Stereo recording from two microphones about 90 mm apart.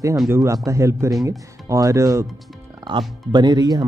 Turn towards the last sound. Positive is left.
turn(degrees=-50)  # may be behind; listen again after turning